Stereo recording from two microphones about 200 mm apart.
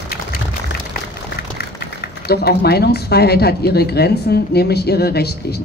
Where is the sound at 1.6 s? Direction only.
50° left (ahead or behind).